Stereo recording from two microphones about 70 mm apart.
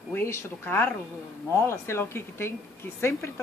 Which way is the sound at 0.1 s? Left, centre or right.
Left.